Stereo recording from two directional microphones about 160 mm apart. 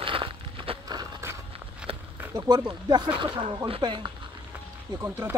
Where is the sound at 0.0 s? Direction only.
35° right (ahead or behind).